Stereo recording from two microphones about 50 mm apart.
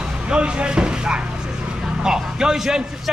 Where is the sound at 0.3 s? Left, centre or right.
Right.